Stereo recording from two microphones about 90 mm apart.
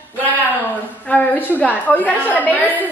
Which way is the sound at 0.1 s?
20° left (ahead or behind).